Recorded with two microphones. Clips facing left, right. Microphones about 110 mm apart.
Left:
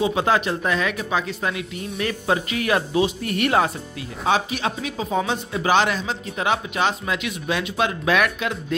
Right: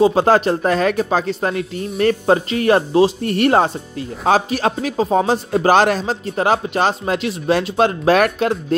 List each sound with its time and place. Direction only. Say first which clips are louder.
0.0 s a man's voice: right 7 dB; 40° right (ahead or behind)